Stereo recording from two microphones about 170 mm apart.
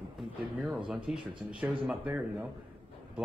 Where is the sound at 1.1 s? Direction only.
5° right (ahead or behind).